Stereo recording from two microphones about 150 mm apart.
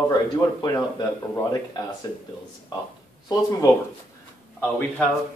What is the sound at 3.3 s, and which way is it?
Speech, 20° left (ahead or behind).